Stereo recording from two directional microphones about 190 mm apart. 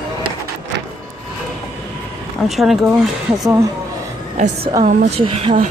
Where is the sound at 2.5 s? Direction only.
Centre (ahead or behind).